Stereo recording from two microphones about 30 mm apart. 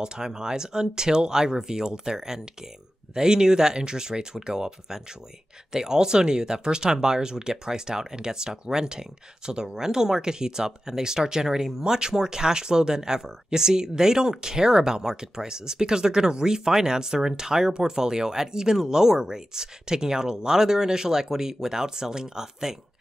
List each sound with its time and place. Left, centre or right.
0.0 s speech: right